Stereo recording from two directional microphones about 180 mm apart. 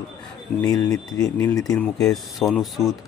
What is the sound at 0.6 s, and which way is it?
Speech, 20° left (ahead or behind).